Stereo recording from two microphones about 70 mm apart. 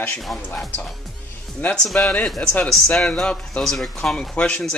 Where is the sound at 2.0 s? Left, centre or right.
Centre.